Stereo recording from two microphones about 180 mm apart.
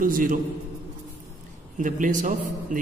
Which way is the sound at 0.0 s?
50° right (ahead or behind).